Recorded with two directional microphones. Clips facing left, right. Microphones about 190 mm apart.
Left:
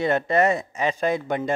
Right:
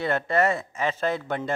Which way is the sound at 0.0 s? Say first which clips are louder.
Left 3 dB; 20° left (ahead or behind).